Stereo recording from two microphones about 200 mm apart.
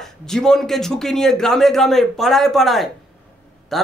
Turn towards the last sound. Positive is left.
turn(degrees=0)  # may be behind; listen again after turning